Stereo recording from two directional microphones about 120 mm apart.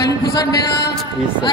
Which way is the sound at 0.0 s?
30° left (ahead or behind).